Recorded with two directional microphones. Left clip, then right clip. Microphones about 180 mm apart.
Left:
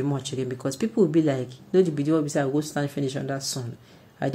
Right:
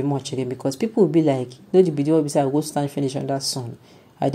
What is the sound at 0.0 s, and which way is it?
A woman's voice, 15° right (ahead or behind).